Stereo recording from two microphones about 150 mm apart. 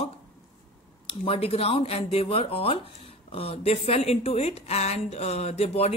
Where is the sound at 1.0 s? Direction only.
40° left (ahead or behind).